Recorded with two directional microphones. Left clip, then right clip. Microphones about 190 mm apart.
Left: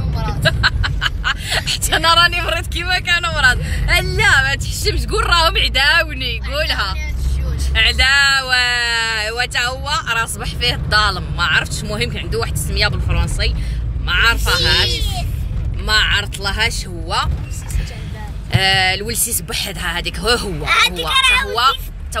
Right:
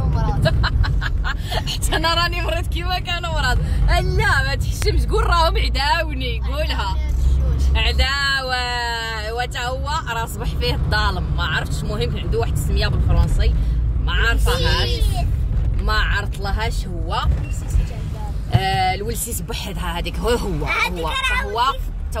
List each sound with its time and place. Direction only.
0.1 s vehicle: 25° right (ahead or behind)
0.4 s speech: 10° left (ahead or behind)
15.9 s speech: 5° left (ahead or behind)
18.5 s speech: 5° left (ahead or behind)
20.7 s a child's voice: 35° right (ahead or behind)